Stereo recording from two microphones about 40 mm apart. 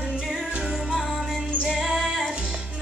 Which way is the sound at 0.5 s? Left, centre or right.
Right.